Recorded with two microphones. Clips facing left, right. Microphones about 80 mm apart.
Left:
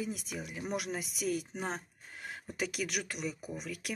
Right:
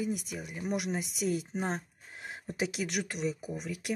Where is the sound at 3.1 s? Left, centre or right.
Right.